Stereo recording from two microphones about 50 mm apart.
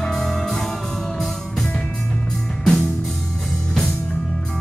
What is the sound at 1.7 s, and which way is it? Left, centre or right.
Music, left.